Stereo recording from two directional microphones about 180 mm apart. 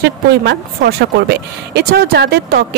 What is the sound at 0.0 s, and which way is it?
Speech, 60° right (ahead or behind).